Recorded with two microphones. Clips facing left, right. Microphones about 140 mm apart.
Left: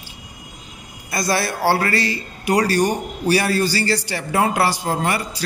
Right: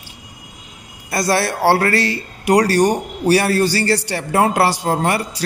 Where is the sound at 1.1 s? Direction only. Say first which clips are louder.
Right 3 dB; 70° right (ahead or behind).